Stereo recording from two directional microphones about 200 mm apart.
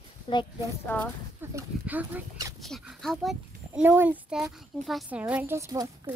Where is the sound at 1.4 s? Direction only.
10° right (ahead or behind).